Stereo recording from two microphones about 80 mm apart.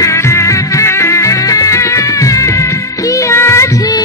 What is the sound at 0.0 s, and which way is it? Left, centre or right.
Music, left.